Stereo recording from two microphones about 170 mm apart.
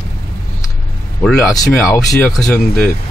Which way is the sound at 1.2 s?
Centre (ahead or behind).